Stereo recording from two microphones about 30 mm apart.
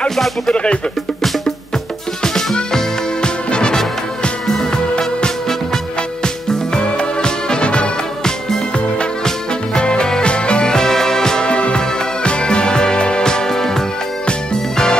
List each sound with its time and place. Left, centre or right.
0.5 s speech: left
2.2 s music: centre
3.2 s music: left
8.2 s music: centre
8.7 s music: left
10.2 s music: left
10.7 s music: centre
11.4 s music: left
11.8 s music: left
12.3 s music: left; by 13.8 s centre
14.2 s music: left